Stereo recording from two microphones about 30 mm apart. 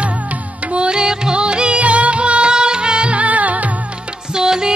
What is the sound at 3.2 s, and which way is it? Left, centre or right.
Music, right.